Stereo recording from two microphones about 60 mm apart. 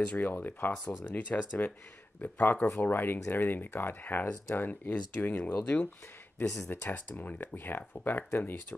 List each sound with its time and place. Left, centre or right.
0.0 s speech: left
6.7 s speech: left